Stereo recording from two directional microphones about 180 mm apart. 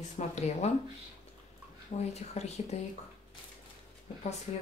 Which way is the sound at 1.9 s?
35° left (ahead or behind).